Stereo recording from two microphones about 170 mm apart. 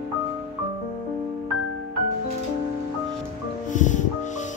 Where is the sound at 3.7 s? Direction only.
45° left (ahead or behind).